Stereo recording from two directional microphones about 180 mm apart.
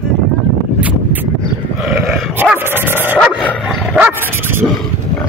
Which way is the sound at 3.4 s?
10° left (ahead or behind).